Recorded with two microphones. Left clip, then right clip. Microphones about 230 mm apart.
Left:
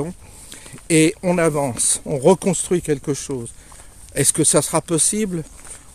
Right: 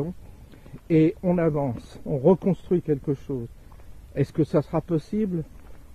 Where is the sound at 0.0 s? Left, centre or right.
Centre.